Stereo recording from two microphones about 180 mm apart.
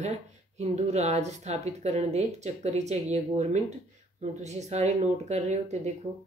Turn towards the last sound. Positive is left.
turn(degrees=-40)  # may be behind; listen again after turning